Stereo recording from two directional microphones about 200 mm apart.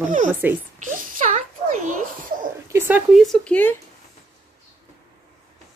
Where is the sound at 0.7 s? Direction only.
40° right (ahead or behind).